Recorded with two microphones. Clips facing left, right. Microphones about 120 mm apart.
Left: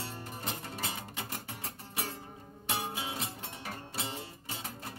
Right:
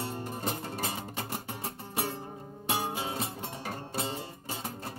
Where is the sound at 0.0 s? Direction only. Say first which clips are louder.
Right 6 dB; 20° right (ahead or behind).